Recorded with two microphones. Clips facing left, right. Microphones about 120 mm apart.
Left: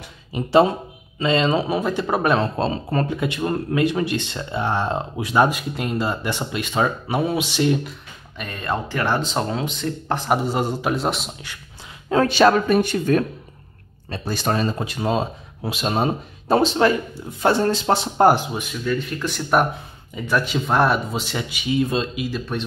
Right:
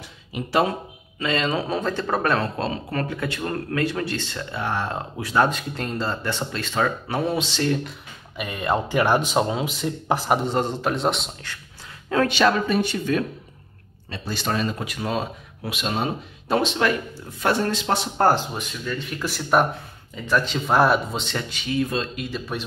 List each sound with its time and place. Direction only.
0.3 s speech: 30° left (ahead or behind)
1.7 s speech: 10° left (ahead or behind)
2.5 s speech: 25° left (ahead or behind)
8.4 s speech: 10° right (ahead or behind); by 11.6 s 10° left (ahead or behind)
12.1 s speech: 35° left (ahead or behind)
18.1 s speech: 15° left (ahead or behind)
19.1 s speech: 5° right (ahead or behind); by 22.1 s 20° left (ahead or behind)
22.1 s speech: 5° left (ahead or behind)